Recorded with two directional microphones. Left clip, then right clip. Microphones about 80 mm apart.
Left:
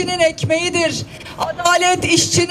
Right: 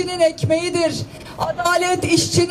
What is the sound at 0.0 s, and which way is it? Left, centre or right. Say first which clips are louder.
Speech: left 1 dB; left.